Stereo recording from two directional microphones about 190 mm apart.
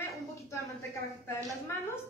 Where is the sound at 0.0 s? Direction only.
15° left (ahead or behind).